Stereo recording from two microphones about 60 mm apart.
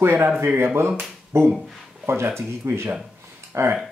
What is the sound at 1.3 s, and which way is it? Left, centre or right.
Speech, right.